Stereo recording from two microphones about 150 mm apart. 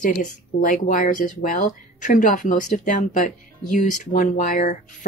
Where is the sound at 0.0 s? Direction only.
65° left (ahead or behind).